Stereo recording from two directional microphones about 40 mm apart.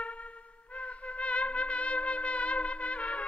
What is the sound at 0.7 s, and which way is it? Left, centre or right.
Trumpet, left.